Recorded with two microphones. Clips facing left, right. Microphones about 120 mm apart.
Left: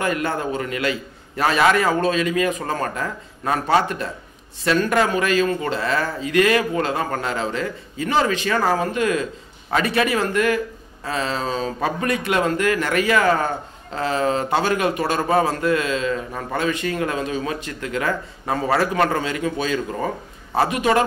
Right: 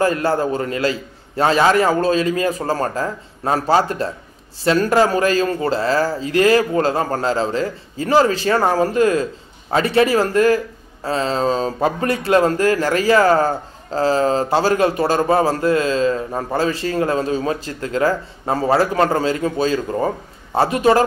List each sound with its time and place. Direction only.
0.0 s a man's voice: 35° right (ahead or behind)